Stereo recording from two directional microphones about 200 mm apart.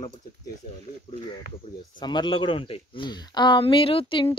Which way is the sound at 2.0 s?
25° left (ahead or behind).